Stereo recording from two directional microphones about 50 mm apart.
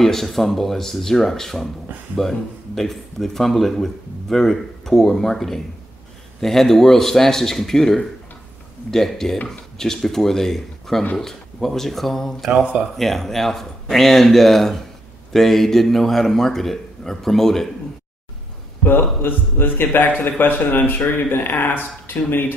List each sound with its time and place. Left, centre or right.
0.0 s a man's voice: centre
18.9 s a man's voice: left